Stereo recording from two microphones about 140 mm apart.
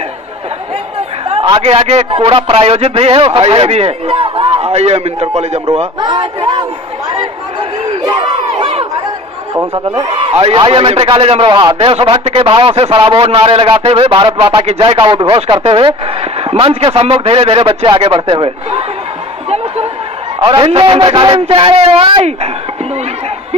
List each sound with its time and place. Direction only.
1.3 s a man's voice: 45° right (ahead or behind)
5.9 s a sound: 30° right (ahead or behind)
8.1 s crowd: 35° right (ahead or behind)
10.3 s a man's voice: 35° right (ahead or behind)
20.3 s a man's voice: 40° right (ahead or behind)